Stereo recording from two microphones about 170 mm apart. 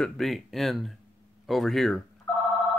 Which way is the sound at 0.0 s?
Centre (ahead or behind).